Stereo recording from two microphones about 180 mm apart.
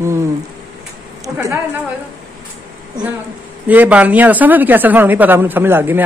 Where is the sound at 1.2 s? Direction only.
15° right (ahead or behind).